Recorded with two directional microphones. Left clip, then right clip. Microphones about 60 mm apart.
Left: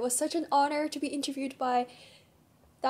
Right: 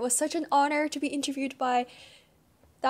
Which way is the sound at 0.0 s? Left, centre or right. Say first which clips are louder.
Right 2 dB; right.